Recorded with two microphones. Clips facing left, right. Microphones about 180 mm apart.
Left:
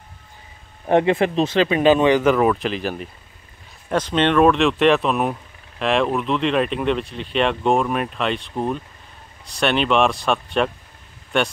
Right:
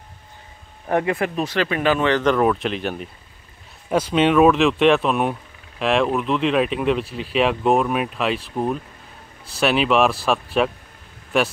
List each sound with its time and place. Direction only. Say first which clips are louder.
0.8 s speech: left 4 dB; 25° left (ahead or behind); by 11.5 s centre (ahead or behind)